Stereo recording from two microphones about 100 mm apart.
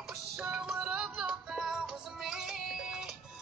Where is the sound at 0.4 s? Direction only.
5° right (ahead or behind).